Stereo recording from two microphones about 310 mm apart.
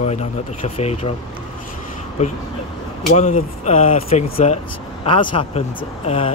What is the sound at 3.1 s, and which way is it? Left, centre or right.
Speech, left.